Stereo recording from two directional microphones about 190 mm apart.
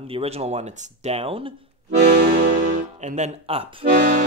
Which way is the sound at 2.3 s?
45° right (ahead or behind).